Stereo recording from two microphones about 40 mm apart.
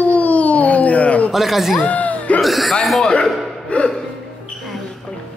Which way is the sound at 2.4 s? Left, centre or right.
Centre.